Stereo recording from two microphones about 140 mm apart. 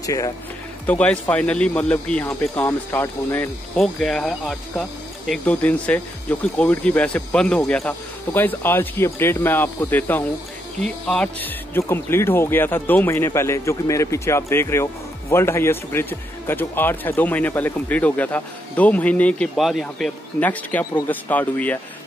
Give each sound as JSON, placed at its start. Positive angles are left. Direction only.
{"t": 0.0, "sound": "speech", "side_deg": 25}
{"t": 0.8, "sound": "speech", "side_deg": 10}
{"t": 3.7, "sound": "speech", "side_deg": 5}